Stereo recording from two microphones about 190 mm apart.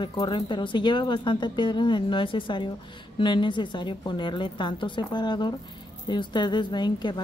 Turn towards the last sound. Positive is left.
turn(degrees=25)  # may be behind; listen again after turning